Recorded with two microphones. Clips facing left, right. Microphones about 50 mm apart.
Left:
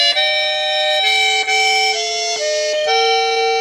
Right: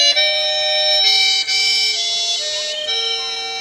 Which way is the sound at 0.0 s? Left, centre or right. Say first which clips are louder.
Left 1 dB; centre.